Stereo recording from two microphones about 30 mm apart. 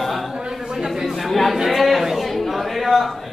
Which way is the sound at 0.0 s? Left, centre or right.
Centre.